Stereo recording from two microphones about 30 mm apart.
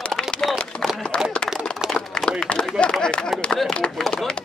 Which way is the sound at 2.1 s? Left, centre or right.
Left.